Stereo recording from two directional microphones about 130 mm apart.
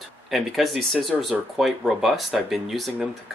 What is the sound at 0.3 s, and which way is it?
Speech, centre (ahead or behind).